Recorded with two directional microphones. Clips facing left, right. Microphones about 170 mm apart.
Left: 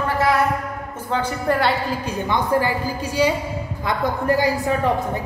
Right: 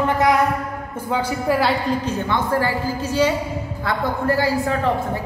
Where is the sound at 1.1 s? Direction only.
5° right (ahead or behind).